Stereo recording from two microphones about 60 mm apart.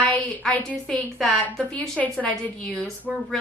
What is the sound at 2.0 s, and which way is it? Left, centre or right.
Speech, left.